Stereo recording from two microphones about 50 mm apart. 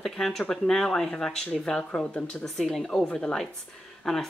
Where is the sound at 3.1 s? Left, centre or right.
Centre.